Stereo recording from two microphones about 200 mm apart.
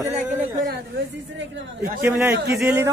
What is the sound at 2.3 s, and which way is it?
Speech, 55° right (ahead or behind).